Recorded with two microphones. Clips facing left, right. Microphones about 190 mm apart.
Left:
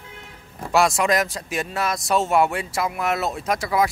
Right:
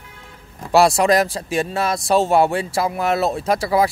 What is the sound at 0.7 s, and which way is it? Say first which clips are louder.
Speech: right 5 dB; 35° right (ahead or behind).